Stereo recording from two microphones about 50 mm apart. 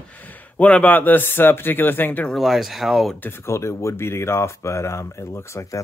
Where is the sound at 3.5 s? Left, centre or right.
Left.